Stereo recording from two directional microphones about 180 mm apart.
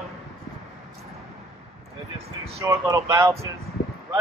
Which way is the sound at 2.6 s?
15° right (ahead or behind).